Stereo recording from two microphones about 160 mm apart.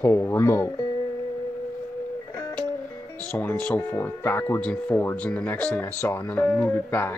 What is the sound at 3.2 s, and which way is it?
Speech, 10° left (ahead or behind).